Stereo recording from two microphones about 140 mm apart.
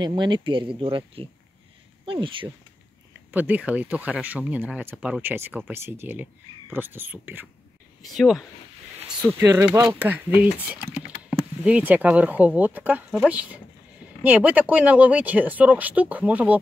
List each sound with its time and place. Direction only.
0.0 s speech: 35° right (ahead or behind)
3.3 s speech: 10° right (ahead or behind)
8.0 s speech: centre (ahead or behind)
9.4 s speech: 20° right (ahead or behind)